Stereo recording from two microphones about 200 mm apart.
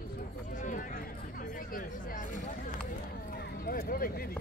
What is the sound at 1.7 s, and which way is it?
Music, 40° left (ahead or behind).